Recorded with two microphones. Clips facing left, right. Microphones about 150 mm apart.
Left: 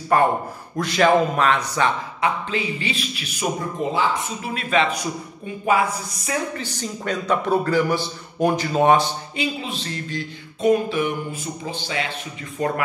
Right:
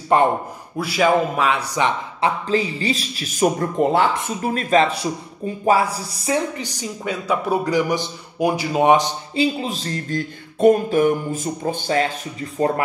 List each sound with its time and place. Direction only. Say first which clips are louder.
0.1 s a man's voice: right 2 dB; 20° right (ahead or behind)
0.7 s a man's voice: even; 5° right (ahead or behind)
2.2 s speech: right 4 dB; 35° right (ahead or behind); by 4.1 s 60° right (ahead or behind)
4.4 s speech: right 6 dB; 40° right (ahead or behind)
6.5 s a man's voice: even; 15° right (ahead or behind)
9.3 s speech: right 6 dB; 35° right (ahead or behind)